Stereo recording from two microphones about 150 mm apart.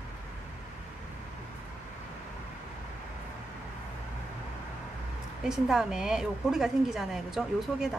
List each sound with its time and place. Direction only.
5.5 s a woman's voice: 5° right (ahead or behind)